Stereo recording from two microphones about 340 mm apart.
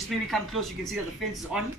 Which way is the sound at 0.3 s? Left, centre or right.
Centre.